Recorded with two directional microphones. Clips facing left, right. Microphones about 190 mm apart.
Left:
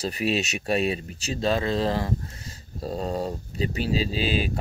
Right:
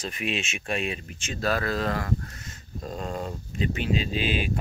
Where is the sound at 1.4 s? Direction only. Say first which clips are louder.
Left 3 dB; 25° left (ahead or behind).